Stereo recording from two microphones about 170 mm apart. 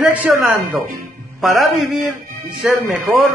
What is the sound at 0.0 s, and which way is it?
A woman's voice, 10° right (ahead or behind).